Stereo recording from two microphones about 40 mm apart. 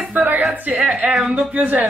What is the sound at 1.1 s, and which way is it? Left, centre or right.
Speech, centre.